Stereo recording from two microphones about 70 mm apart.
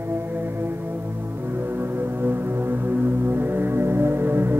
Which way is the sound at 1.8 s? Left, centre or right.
Right.